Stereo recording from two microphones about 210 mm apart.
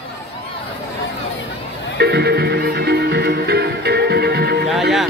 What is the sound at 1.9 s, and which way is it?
Music, 50° right (ahead or behind).